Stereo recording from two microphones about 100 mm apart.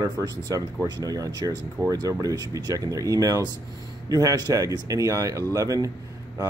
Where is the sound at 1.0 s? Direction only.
35° right (ahead or behind).